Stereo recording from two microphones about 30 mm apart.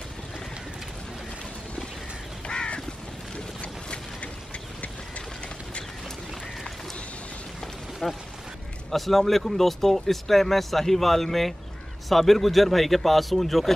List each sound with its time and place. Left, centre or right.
2.4 s crow: left
8.0 s speech: centre
8.9 s a man's voice: centre